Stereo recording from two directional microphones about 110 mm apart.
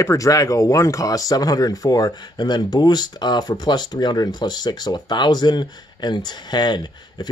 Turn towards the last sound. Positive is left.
turn(degrees=40)  # may be behind; listen again after turning